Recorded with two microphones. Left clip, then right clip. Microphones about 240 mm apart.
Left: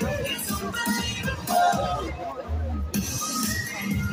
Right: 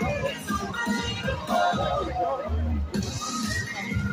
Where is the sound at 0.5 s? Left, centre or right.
Left.